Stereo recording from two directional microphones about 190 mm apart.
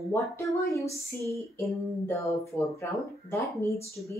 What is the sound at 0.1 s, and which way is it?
Speech, 15° left (ahead or behind).